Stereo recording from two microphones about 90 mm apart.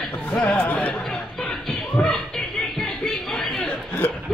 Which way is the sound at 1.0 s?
5° left (ahead or behind).